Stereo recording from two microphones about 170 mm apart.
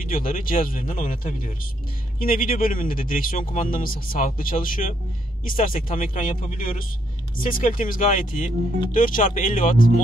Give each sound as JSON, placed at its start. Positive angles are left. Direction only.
{"t": 0.0, "sound": "a man's voice", "side_deg": 55}